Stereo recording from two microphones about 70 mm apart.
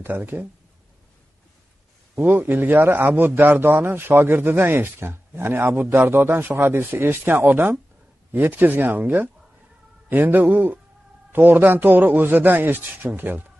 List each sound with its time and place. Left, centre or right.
0.0 s a man's voice: right
2.1 s a man's voice: right